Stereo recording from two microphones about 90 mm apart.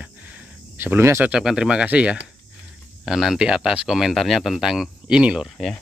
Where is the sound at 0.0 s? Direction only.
15° right (ahead or behind).